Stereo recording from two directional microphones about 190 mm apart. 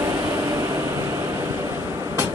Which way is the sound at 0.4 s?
15° right (ahead or behind).